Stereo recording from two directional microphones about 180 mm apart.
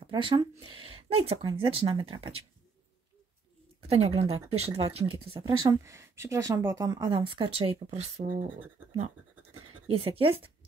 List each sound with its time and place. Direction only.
0.0 s speech: 30° right (ahead or behind)
3.8 s speech: 35° right (ahead or behind)